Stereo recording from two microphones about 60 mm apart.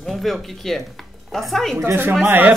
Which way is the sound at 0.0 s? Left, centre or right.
Centre.